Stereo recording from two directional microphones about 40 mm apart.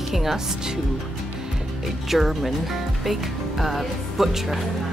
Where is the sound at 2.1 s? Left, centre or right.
Centre.